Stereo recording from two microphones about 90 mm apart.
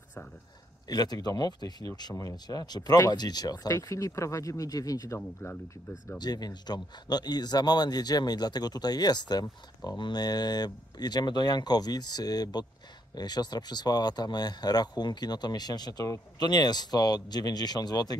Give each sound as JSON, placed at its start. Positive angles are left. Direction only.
{"t": 0.8, "sound": "speech", "side_deg": 45}
{"t": 5.4, "sound": "speech", "side_deg": 25}
{"t": 6.1, "sound": "speech", "side_deg": 50}